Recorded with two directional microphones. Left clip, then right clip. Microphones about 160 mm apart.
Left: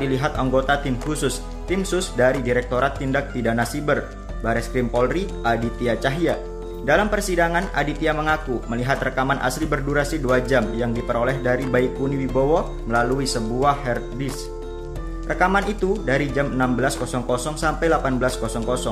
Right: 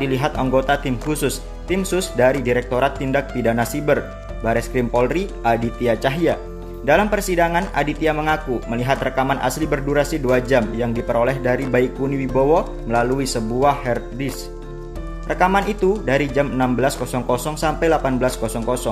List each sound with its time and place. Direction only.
0.0 s speech: 20° right (ahead or behind)